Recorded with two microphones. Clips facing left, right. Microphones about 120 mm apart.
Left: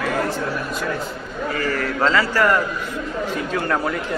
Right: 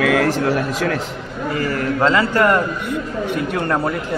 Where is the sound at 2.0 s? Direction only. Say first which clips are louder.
Right 3 dB; 20° right (ahead or behind).